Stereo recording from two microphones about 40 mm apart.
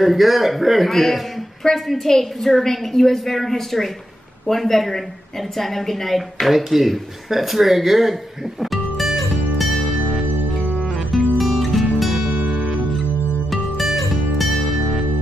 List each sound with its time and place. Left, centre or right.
0.0 s a man's voice: centre
11.1 s music: centre
12.4 s music: right
13.5 s music: centre